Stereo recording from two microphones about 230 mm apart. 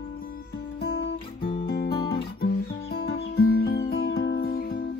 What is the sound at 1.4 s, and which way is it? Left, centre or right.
Music, left.